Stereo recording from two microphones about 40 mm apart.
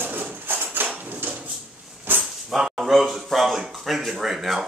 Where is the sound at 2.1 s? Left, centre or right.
Right.